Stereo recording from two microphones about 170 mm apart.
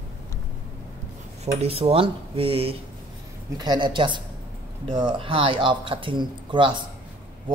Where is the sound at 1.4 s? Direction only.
40° right (ahead or behind).